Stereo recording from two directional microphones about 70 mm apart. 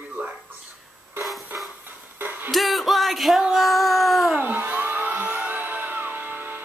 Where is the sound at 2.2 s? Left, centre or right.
Right.